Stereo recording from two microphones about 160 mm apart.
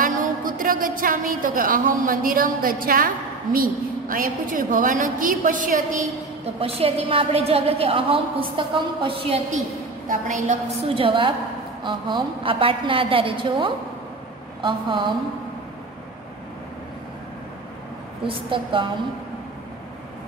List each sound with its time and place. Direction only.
0.0 s a woman's voice: 60° right (ahead or behind)
6.4 s a woman's voice: 35° right (ahead or behind)
10.0 s a woman's voice: 50° right (ahead or behind)
11.0 s a woman's voice: 35° right (ahead or behind)
18.2 s a woman's voice: 30° right (ahead or behind)